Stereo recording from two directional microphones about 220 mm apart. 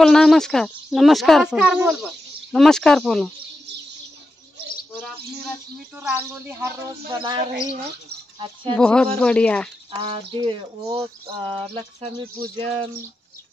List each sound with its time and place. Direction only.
0.0 s speech: centre (ahead or behind)
5.9 s speech: 10° right (ahead or behind)
7.1 s speech: 20° right (ahead or behind)
8.7 s speech: 5° left (ahead or behind)
9.8 s speech: 25° right (ahead or behind)